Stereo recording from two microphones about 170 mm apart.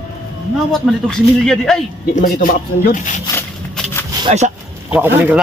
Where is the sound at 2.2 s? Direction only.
55° left (ahead or behind).